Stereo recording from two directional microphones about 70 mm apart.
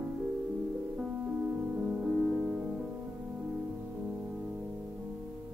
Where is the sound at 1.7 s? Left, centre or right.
Centre.